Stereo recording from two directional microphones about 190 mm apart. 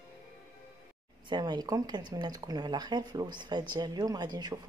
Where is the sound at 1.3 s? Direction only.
20° right (ahead or behind).